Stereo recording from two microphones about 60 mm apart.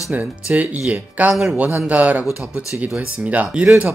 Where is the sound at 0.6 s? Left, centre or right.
Right.